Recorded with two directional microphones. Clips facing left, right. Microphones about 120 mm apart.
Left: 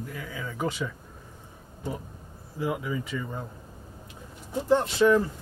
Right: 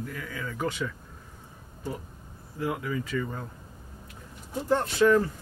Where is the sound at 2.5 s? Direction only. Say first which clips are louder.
Left 1 dB; 15° left (ahead or behind).